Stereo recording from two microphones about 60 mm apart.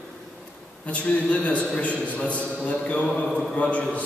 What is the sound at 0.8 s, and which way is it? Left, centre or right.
A man's voice, left.